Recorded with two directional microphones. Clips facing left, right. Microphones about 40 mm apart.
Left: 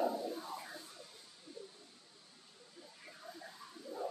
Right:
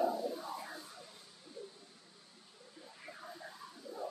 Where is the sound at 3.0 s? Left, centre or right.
Centre.